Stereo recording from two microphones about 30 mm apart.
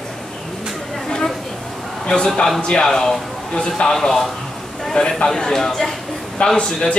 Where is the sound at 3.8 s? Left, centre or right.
Left.